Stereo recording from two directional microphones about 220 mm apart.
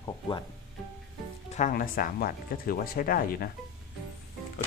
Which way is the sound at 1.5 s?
35° left (ahead or behind).